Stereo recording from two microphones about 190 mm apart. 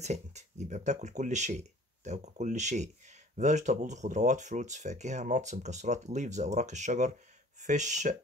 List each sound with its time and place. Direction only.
0.0 s speech: 35° right (ahead or behind)